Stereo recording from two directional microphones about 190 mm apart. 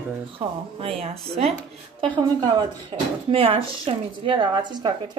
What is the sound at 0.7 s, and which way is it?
A woman's voice, 30° right (ahead or behind).